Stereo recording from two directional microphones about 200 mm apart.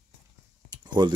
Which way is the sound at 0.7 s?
20° right (ahead or behind).